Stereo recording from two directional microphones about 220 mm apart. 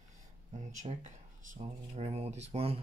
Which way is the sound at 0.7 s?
30° right (ahead or behind).